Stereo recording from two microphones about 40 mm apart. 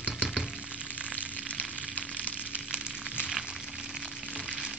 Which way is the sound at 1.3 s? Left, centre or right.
Left.